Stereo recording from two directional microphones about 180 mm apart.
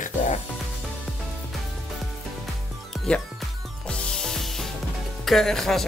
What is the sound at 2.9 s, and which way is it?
Music, 5° left (ahead or behind).